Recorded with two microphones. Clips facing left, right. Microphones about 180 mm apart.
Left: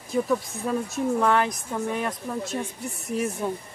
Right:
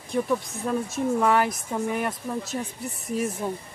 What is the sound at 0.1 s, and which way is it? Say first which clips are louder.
Speech: left 1 dB; centre (ahead or behind).